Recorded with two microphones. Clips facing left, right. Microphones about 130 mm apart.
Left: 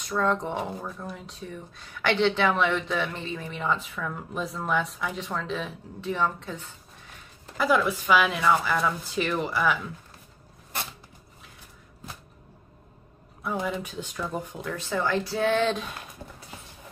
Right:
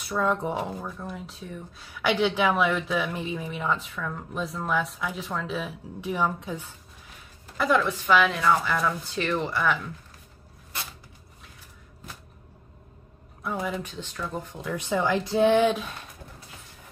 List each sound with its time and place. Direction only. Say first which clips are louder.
0.0 s speech: even; 5° right (ahead or behind)
7.5 s speech: even; 5° left (ahead or behind)
13.4 s speech: left 1 dB; centre (ahead or behind)
14.8 s speech: right 2 dB; 15° right (ahead or behind)